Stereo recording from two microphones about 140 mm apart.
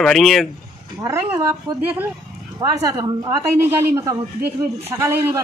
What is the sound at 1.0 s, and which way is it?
Speech, 20° right (ahead or behind).